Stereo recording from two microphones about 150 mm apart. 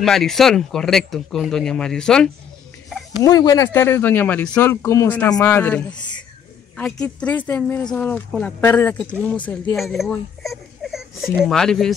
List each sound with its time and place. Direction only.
0.0 s speech: centre (ahead or behind)
3.3 s speech: 25° left (ahead or behind)
3.7 s speech: 15° left (ahead or behind)
5.9 s speech: 30° left (ahead or behind)
6.8 s speech: 5° left (ahead or behind)